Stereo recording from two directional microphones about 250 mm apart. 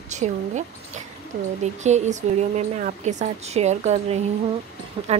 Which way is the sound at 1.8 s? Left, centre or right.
Right.